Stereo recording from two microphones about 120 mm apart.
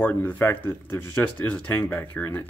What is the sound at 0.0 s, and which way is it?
Speech, 15° left (ahead or behind).